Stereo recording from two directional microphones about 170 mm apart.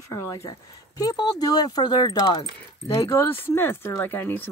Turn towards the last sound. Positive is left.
turn(degrees=10)  # may be behind; listen again after turning